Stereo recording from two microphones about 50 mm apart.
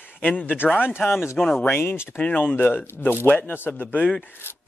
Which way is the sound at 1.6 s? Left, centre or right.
Left.